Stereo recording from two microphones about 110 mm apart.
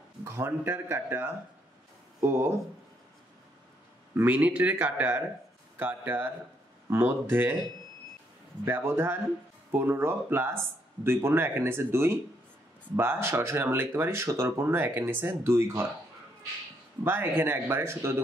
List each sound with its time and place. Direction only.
0.2 s speech: 25° right (ahead or behind)
4.1 s a man's voice: 15° right (ahead or behind)
8.6 s speech: 20° right (ahead or behind)
17.0 s speech: 20° right (ahead or behind)